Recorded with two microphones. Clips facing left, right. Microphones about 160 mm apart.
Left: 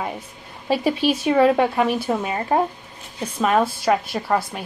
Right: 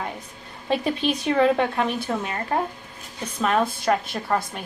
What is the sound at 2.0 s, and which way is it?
Speech, 20° left (ahead or behind).